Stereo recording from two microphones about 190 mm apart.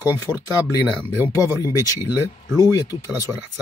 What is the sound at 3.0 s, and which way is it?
Speech, 15° right (ahead or behind).